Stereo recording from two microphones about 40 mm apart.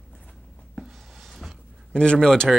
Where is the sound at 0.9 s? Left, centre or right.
Centre.